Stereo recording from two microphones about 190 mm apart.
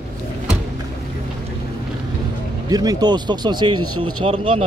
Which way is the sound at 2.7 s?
20° right (ahead or behind).